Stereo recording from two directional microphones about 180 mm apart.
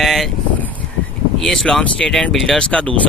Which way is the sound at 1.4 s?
Centre (ahead or behind).